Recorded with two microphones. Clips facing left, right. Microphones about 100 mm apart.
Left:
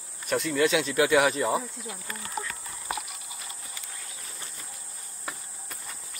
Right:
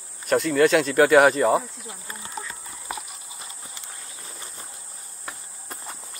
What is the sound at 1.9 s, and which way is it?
Horse, 20° right (ahead or behind).